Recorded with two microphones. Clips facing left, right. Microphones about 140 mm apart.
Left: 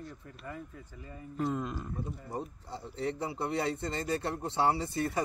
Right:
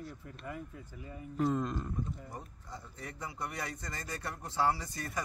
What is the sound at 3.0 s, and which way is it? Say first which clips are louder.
A man's voice: left 9 dB; 30° left (ahead or behind).